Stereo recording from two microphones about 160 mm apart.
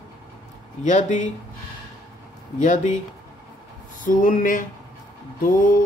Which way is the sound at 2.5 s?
50° left (ahead or behind).